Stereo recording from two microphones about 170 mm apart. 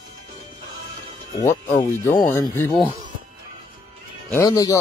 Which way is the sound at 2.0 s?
20° left (ahead or behind).